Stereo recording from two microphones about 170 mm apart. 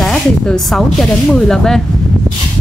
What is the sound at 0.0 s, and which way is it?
Speech, 5° left (ahead or behind).